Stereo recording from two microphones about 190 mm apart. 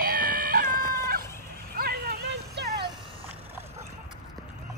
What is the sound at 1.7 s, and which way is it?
Music, 55° right (ahead or behind).